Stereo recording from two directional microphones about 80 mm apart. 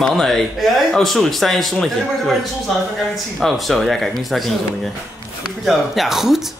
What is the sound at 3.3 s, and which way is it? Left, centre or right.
Speech, centre.